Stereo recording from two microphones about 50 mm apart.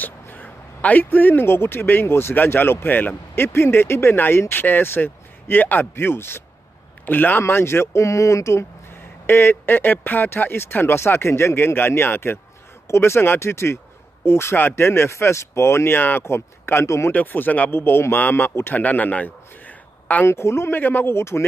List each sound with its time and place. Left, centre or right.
0.0 s speech: left
7.1 s speech: left
7.4 s speech: left
9.2 s speech: left
12.8 s speech: left
17.1 s speech: left
17.6 s speech: left
18.8 s speech: left
20.2 s speech: left
20.7 s speech: left